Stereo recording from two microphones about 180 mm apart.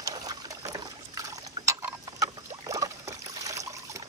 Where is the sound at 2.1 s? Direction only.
20° right (ahead or behind).